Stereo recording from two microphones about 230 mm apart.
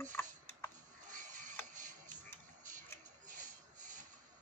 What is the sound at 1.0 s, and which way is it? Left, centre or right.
Printer, right.